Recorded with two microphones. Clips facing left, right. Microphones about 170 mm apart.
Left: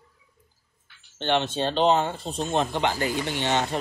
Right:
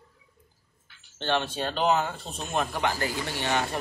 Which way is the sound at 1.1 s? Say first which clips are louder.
Left 3 dB; 20° left (ahead or behind).